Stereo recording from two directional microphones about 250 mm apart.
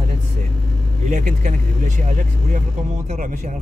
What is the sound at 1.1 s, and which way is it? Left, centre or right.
Speech, right.